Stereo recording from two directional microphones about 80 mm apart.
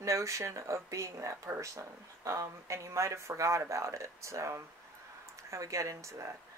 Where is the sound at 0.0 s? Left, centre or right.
Right.